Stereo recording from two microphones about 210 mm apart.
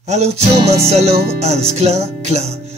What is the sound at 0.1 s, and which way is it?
Music, 30° right (ahead or behind).